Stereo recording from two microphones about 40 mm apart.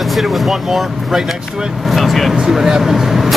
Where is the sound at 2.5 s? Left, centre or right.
Centre.